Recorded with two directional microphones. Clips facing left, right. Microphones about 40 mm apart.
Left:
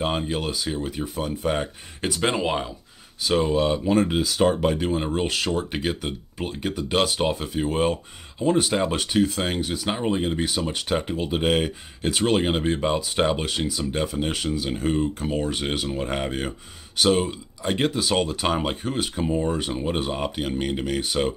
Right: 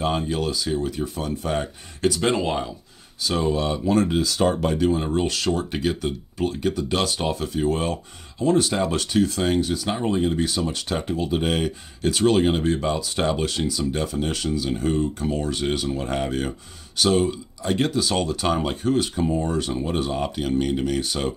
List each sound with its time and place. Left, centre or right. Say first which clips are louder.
0.0 s speech: right 2 dB; centre